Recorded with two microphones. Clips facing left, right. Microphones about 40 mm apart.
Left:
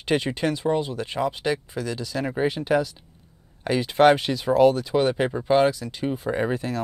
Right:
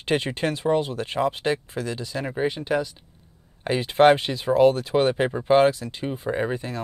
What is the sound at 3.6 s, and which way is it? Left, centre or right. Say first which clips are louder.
Speech: even; right.